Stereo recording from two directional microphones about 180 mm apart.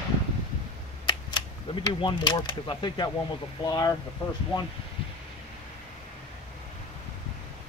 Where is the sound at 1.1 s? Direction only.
25° left (ahead or behind).